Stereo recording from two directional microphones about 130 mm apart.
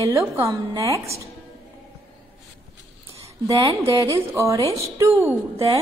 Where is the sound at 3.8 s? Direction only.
25° right (ahead or behind).